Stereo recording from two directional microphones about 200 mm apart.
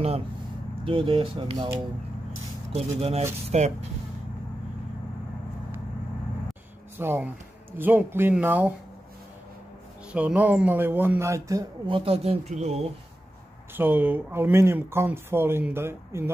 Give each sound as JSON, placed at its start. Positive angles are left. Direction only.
{"t": 0.8, "sound": "speech", "side_deg": -25}
{"t": 2.7, "sound": "speech", "side_deg": -30}
{"t": 7.0, "sound": "speech", "side_deg": -10}
{"t": 10.1, "sound": "speech", "side_deg": -5}
{"t": 13.7, "sound": "speech", "side_deg": -10}